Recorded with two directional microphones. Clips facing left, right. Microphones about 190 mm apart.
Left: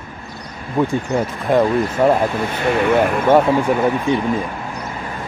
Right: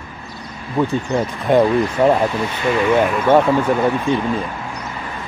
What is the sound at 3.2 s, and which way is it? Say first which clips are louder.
Speech: even; 10° left (ahead or behind).